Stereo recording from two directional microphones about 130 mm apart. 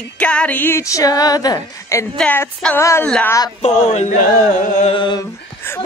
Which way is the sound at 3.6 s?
60° left (ahead or behind).